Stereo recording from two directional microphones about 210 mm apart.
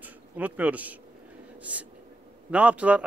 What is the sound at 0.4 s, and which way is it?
A man's voice, 5° right (ahead or behind).